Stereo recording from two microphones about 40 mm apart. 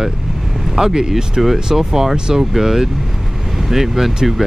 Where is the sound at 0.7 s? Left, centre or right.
Centre.